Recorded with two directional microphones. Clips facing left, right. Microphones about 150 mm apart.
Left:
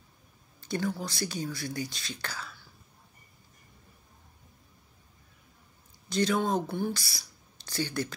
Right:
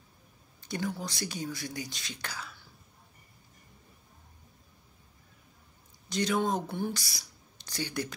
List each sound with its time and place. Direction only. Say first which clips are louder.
0.7 s speech: left 3 dB; 15° right (ahead or behind)
6.0 s speech: left 2 dB; 15° right (ahead or behind)